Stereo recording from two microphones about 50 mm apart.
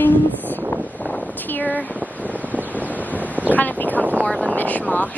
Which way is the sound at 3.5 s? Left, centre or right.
Left.